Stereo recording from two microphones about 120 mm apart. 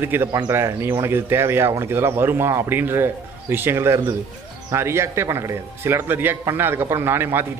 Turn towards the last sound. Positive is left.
turn(degrees=-20)  # may be behind; listen again after turning